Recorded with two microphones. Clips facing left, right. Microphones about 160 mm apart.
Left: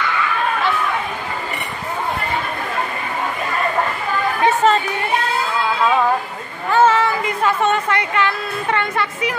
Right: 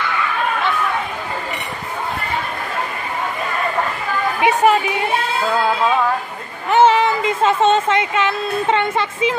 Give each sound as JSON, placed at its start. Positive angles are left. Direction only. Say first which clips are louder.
{"t": 4.4, "sound": "chatter", "louder": "right 1 dB", "side_deg": -15}
{"t": 6.7, "sound": "speech", "louder": "right 2 dB", "side_deg": -20}